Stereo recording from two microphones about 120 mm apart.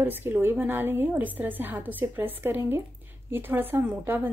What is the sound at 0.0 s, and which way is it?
A woman's voice, 15° right (ahead or behind).